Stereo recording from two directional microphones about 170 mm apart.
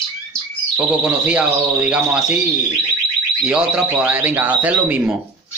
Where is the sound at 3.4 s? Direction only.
5° right (ahead or behind).